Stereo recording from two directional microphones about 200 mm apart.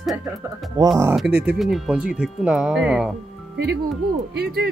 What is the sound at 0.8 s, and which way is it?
Speech, 20° right (ahead or behind).